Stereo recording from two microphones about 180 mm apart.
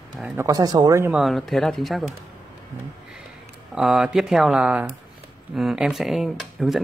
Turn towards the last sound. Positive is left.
turn(degrees=0)  # may be behind; listen again after turning